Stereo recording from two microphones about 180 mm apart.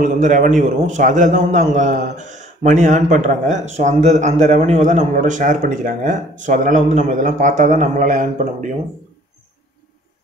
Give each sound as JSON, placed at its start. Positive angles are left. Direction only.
{"t": 0.0, "sound": "a man's voice", "side_deg": -45}